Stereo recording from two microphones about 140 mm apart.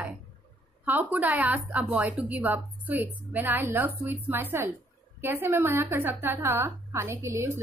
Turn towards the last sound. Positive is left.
turn(degrees=-20)  # may be behind; listen again after turning